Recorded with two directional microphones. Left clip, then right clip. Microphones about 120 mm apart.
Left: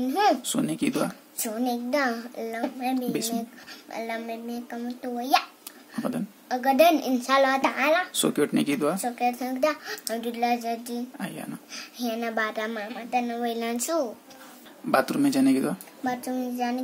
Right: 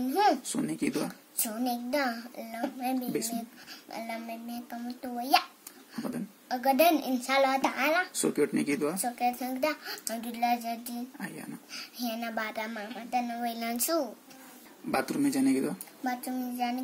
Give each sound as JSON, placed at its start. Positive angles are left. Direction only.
{"t": 0.1, "sound": "a sound", "side_deg": 25}
{"t": 0.5, "sound": "a man's voice", "side_deg": 35}
{"t": 1.4, "sound": "a child's voice", "side_deg": 15}
{"t": 5.9, "sound": "a man's voice", "side_deg": 30}
{"t": 6.5, "sound": "a child's voice", "side_deg": 15}
{"t": 8.1, "sound": "a child's voice", "side_deg": 30}
{"t": 8.9, "sound": "a child's voice", "side_deg": 15}
{"t": 11.1, "sound": "a man's voice", "side_deg": 35}
{"t": 11.7, "sound": "a woman's voice", "side_deg": 20}
{"t": 14.9, "sound": "a man's voice", "side_deg": 30}
{"t": 16.0, "sound": "a child's voice", "side_deg": 20}